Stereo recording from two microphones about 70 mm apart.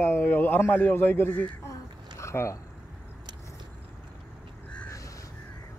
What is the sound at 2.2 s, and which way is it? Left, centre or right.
Speech, left.